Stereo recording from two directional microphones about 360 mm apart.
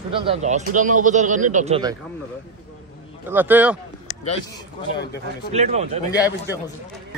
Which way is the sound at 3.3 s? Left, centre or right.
Centre.